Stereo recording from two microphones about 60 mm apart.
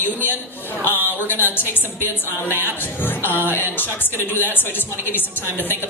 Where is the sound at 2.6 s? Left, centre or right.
Left.